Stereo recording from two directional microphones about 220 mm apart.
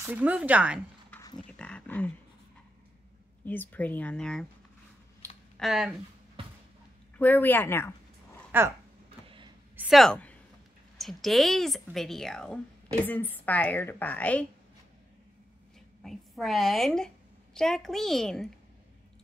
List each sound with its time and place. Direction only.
0.0 s speech: 10° right (ahead or behind)
1.1 s a sound: 15° left (ahead or behind)
1.6 s speech: 5° left (ahead or behind)
3.4 s speech: 10° left (ahead or behind)
5.6 s speech: centre (ahead or behind)
7.2 s speech: 10° left (ahead or behind)
8.5 s speech: 10° right (ahead or behind)
9.8 s a sound: centre (ahead or behind)
11.0 s speech: centre (ahead or behind)
16.0 s a woman's voice: centre (ahead or behind)